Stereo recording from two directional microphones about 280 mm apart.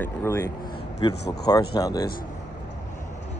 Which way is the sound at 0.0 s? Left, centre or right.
Centre.